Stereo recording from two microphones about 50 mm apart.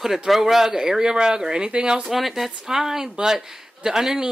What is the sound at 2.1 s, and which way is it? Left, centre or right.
Speech, centre.